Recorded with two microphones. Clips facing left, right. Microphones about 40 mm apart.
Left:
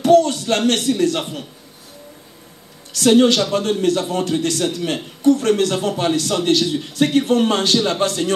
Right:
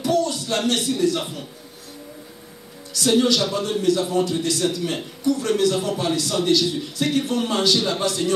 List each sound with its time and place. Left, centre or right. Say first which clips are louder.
0.0 s a man's voice: left 8 dB; left
2.9 s a man's voice: left 5 dB; left